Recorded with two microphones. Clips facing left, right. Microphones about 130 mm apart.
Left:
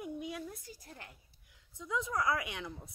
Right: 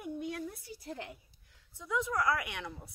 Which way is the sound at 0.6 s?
65° right (ahead or behind).